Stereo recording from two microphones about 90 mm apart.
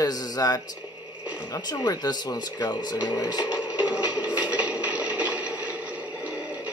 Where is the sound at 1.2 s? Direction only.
15° right (ahead or behind).